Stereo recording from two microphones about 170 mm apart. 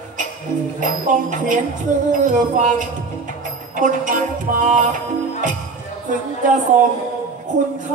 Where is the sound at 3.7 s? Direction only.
50° right (ahead or behind).